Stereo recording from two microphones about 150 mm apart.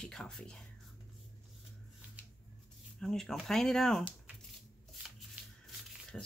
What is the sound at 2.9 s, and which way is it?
Speech, 5° left (ahead or behind).